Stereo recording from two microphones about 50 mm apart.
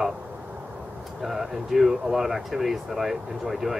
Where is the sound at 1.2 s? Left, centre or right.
Centre.